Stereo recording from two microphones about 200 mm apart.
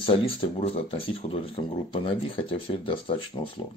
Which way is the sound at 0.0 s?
30° left (ahead or behind).